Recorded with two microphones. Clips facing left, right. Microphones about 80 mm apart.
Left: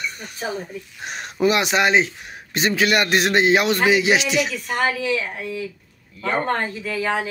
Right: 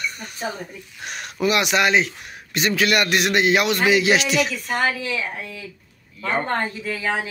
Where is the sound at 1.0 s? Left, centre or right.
Left.